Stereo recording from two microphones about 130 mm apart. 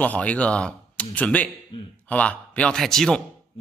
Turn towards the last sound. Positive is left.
turn(degrees=5)  # may be behind; listen again after turning